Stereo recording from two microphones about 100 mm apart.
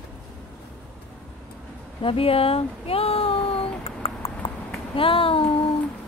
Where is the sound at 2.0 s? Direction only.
70° left (ahead or behind).